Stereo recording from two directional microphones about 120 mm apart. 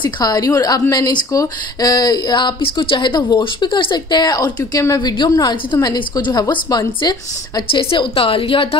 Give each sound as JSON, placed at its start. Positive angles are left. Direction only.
{"t": 0.0, "sound": "speech", "side_deg": 35}
{"t": 7.9, "sound": "a woman's voice", "side_deg": 50}